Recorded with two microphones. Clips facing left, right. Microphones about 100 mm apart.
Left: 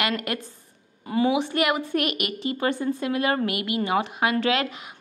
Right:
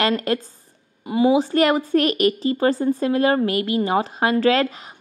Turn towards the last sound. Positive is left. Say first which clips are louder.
# right 5 dB
turn(degrees=-35)  # may be behind; listen again after turning